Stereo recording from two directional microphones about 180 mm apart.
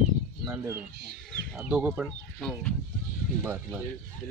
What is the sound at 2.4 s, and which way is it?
Speech, 5° left (ahead or behind).